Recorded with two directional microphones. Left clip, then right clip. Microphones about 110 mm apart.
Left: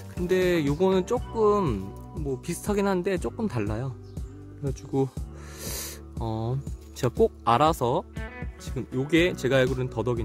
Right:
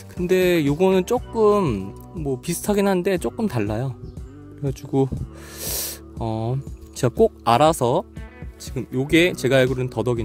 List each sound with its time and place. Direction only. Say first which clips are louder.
0.2 s speech: right 5 dB; 45° right (ahead or behind)